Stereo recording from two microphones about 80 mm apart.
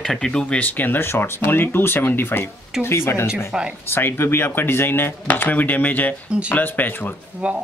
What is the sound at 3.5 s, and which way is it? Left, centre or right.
Speech, centre.